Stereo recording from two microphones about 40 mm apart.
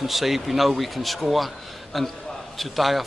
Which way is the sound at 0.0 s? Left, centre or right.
Centre.